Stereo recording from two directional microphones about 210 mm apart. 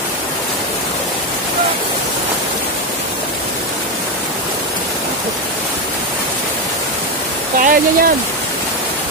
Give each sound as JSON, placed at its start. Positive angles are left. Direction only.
{"t": 7.6, "sound": "speech", "side_deg": -40}